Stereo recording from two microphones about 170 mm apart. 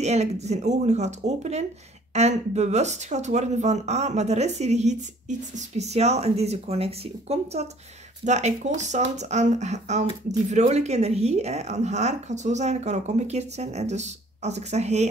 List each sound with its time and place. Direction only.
0.0 s speech: 40° right (ahead or behind)